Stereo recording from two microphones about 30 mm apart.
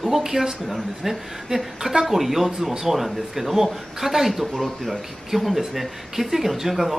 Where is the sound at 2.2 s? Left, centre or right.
Centre.